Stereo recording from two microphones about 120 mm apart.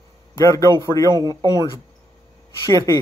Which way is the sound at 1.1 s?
30° right (ahead or behind).